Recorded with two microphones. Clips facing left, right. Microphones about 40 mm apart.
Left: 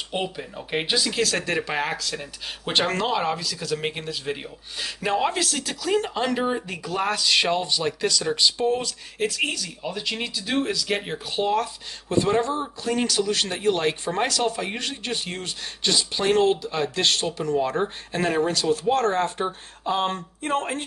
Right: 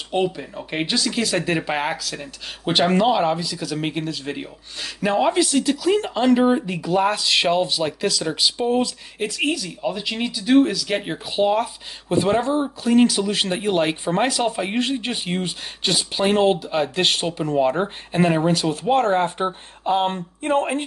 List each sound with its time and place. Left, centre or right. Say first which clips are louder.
0.1 s speech: right 8 dB; centre
1.2 s speech: right 3 dB; centre